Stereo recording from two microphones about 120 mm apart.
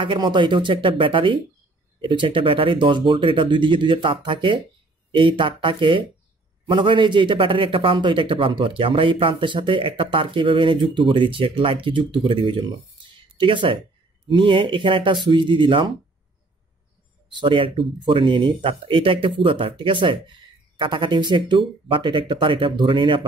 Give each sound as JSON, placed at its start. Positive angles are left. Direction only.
{"t": 0.0, "sound": "a man's voice", "side_deg": -40}
{"t": 17.3, "sound": "a man's voice", "side_deg": -40}